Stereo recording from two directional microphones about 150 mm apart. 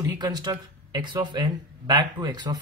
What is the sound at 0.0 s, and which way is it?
A man's voice, 30° right (ahead or behind).